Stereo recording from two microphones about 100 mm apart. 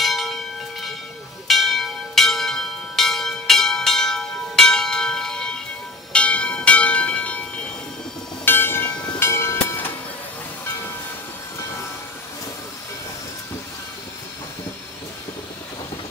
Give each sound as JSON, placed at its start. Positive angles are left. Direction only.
{"t": 0.0, "sound": "bell", "side_deg": 0}
{"t": 1.5, "sound": "church bell", "side_deg": 0}
{"t": 8.5, "sound": "train", "side_deg": 20}